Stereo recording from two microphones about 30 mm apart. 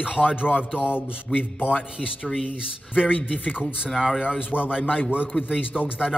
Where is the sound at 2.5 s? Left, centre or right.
Left.